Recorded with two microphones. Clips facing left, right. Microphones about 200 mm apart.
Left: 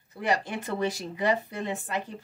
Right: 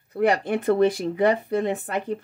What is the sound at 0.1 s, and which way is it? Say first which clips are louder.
Speech: right 7 dB; 55° right (ahead or behind).